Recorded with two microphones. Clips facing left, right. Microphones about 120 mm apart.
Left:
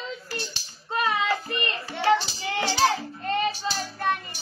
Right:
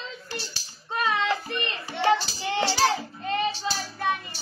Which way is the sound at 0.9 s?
Centre (ahead or behind).